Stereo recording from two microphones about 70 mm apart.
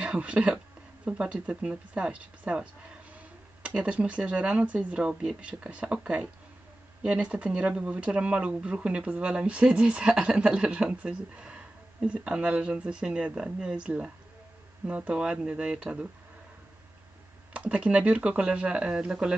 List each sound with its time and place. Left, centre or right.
0.0 s speech: centre
17.6 s speech: centre